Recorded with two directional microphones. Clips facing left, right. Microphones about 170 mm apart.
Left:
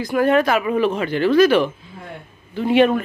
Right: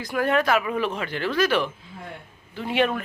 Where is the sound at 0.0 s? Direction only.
20° left (ahead or behind).